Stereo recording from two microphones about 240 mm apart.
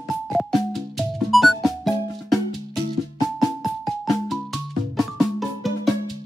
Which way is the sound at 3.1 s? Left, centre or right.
Centre.